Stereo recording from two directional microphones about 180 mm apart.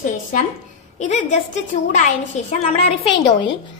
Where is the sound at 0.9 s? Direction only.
40° left (ahead or behind).